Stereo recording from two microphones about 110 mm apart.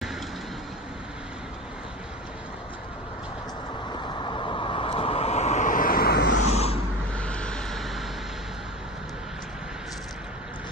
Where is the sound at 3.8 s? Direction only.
45° left (ahead or behind); by 5.6 s 75° left (ahead or behind).